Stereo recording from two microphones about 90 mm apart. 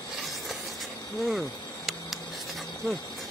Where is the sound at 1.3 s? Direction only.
Centre (ahead or behind).